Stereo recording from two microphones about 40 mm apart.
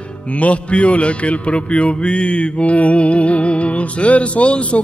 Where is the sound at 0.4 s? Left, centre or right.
Left.